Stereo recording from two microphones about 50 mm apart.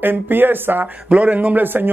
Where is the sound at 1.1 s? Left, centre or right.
Right.